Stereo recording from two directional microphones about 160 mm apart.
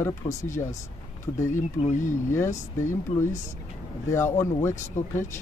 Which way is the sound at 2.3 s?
15° left (ahead or behind).